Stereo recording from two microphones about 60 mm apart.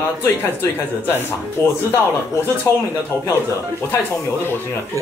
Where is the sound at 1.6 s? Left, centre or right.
Left.